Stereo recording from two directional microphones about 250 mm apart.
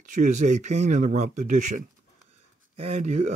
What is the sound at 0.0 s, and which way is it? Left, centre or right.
Speech, right.